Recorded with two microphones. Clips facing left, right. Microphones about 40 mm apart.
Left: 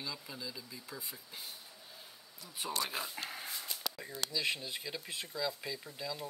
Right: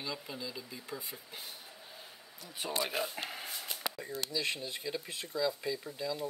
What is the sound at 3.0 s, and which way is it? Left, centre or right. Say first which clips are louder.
Speech: right 4 dB; centre.